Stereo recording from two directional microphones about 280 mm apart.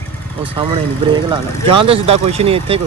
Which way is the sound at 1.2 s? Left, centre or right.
Centre.